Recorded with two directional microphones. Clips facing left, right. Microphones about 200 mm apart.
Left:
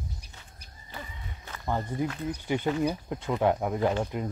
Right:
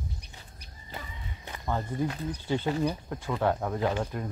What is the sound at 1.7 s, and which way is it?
Speech, 15° left (ahead or behind).